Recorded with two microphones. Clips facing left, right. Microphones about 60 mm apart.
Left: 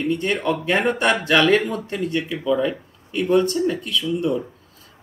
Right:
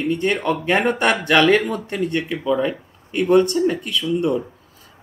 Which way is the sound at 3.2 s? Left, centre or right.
Right.